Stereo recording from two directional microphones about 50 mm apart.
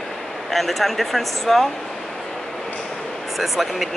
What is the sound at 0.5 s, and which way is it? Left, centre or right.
Speech, centre.